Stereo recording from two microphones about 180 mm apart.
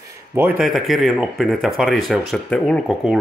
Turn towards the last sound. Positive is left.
turn(degrees=0)  # may be behind; listen again after turning